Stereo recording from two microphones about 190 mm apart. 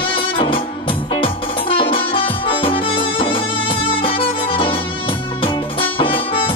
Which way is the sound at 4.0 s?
25° left (ahead or behind).